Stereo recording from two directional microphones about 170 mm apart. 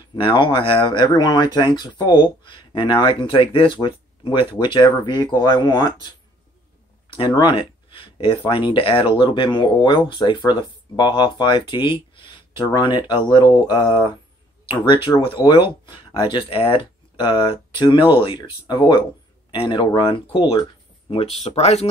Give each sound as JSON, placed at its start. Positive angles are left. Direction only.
{"t": 0.1, "sound": "speech", "side_deg": 30}
{"t": 7.1, "sound": "speech", "side_deg": 25}